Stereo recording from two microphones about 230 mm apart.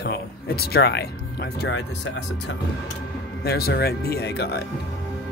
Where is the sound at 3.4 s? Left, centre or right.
Left.